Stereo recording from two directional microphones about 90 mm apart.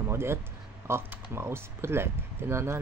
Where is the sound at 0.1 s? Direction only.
30° right (ahead or behind).